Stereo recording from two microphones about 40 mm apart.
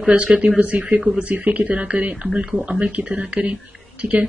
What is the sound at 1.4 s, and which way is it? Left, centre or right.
Speech, right.